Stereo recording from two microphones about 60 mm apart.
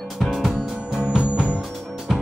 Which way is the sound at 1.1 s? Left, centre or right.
Centre.